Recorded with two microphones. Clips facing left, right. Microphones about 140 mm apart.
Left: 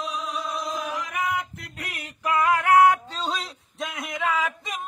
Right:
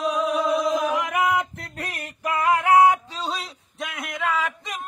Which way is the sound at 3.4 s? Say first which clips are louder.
Even; centre (ahead or behind).